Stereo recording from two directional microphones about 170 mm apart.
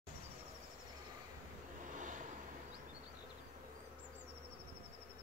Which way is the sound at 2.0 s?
50° right (ahead or behind).